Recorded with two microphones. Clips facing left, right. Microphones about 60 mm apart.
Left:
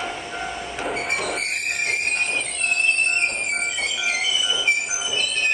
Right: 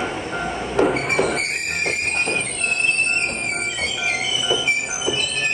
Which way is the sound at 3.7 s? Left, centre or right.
Right.